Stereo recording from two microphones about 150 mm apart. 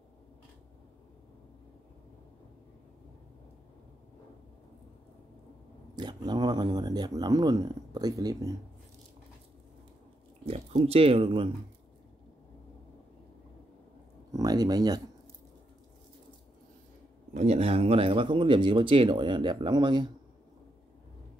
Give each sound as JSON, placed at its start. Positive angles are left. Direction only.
{"t": 5.9, "sound": "speech", "side_deg": -30}
{"t": 10.4, "sound": "a sound", "side_deg": -45}
{"t": 10.9, "sound": "speech", "side_deg": -40}
{"t": 14.3, "sound": "speech", "side_deg": -25}
{"t": 17.3, "sound": "speech", "side_deg": -50}